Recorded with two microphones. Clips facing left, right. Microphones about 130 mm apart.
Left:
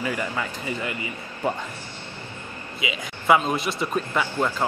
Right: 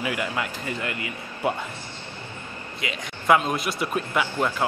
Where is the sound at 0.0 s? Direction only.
10° right (ahead or behind).